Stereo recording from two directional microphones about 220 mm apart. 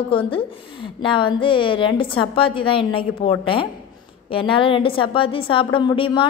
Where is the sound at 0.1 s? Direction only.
25° left (ahead or behind).